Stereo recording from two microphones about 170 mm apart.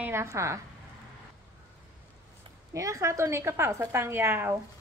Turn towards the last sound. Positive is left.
turn(degrees=-15)  # may be behind; listen again after turning